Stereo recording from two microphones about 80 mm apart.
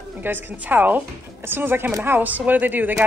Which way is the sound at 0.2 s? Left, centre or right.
Right.